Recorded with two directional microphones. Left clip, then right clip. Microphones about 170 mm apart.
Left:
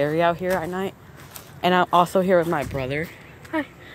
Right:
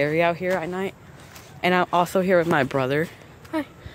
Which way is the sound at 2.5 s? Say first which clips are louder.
Right 4 dB; 35° right (ahead or behind).